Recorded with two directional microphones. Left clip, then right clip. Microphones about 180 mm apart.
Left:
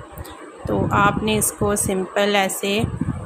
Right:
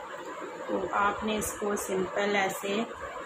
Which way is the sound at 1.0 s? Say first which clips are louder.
Left 10 dB; 70° left (ahead or behind).